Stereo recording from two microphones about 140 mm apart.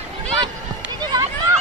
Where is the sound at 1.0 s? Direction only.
30° right (ahead or behind).